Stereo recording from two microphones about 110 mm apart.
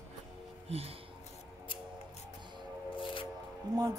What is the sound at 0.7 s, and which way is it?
Music, 65° right (ahead or behind).